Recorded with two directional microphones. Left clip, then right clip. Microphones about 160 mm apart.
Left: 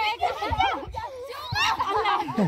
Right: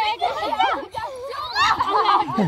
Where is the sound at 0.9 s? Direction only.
45° right (ahead or behind).